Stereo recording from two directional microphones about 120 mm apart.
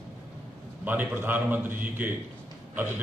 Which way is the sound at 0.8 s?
15° right (ahead or behind).